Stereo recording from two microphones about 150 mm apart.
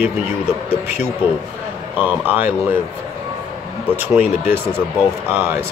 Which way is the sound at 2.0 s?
10° right (ahead or behind).